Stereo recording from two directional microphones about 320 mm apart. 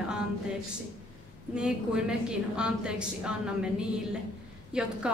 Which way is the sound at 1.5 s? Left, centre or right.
Centre.